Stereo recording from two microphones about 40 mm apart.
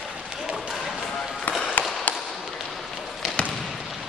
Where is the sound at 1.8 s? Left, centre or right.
Left.